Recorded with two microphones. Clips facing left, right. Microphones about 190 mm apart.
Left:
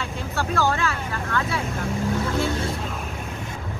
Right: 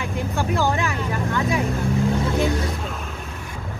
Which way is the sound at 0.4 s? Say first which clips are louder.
Even; 15° right (ahead or behind).